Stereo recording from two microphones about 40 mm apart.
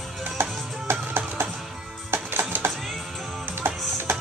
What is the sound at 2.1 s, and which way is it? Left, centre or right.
Music, right.